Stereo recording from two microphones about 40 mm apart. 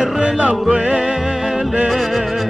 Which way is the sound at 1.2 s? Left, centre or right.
Centre.